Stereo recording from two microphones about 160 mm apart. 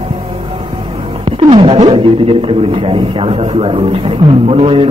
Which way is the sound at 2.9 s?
35° right (ahead or behind).